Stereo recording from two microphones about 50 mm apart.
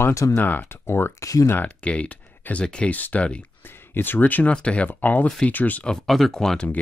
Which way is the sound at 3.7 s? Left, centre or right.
Left.